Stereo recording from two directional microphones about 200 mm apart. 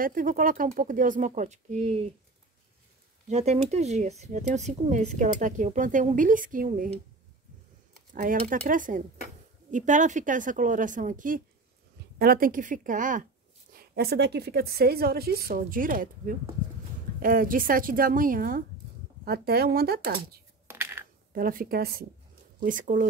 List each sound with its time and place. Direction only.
0.0 s speech: 45° right (ahead or behind)
3.3 s speech: 35° right (ahead or behind)
8.1 s speech: 40° right (ahead or behind)
13.7 s a woman's voice: 50° right (ahead or behind)
20.6 s coin: 10° right (ahead or behind)
21.3 s a woman's voice: 45° right (ahead or behind)